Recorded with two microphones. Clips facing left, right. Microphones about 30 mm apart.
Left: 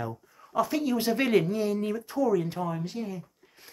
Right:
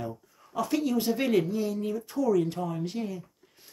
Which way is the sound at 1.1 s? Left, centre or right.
Left.